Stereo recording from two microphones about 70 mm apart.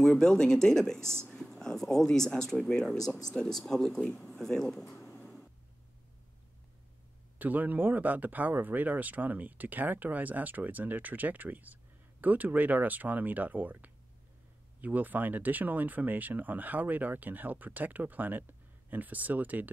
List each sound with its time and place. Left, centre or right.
0.0 s speech: centre
7.3 s speech: right